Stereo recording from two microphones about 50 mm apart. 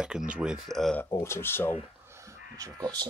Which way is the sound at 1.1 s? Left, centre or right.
Left.